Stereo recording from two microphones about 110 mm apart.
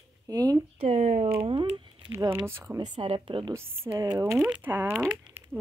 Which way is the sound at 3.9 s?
35° right (ahead or behind).